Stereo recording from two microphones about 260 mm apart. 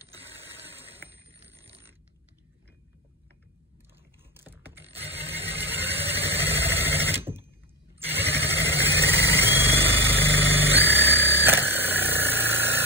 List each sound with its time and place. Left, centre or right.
0.1 s a sound: right
0.9 s bicycle bell: centre
4.5 s mechanisms: centre
4.8 s mechanisms: right
5.2 s vehicle: right
5.6 s vehicle: centre
7.1 s a sound: centre
8.1 s vehicle: centre